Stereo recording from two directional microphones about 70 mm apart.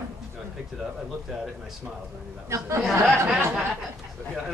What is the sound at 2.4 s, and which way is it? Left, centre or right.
Speech, right.